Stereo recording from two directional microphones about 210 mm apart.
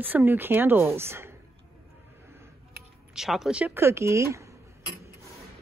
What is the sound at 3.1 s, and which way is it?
Speech, centre (ahead or behind).